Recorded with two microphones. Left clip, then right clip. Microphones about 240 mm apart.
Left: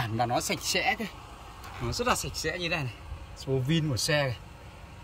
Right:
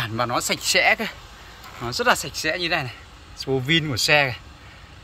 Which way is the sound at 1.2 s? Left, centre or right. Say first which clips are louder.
Right 3 dB; left.